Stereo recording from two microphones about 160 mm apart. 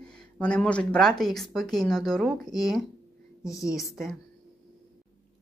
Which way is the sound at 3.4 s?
20° left (ahead or behind).